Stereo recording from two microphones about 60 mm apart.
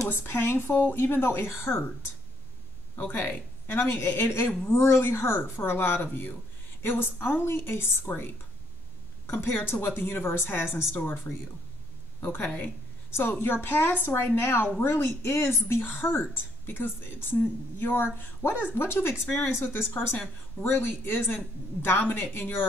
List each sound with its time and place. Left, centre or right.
0.1 s speech: left
3.0 s speech: left
3.8 s speech: left
9.3 s speech: left